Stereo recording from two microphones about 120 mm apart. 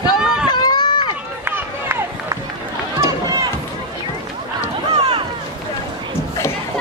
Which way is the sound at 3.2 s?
30° right (ahead or behind).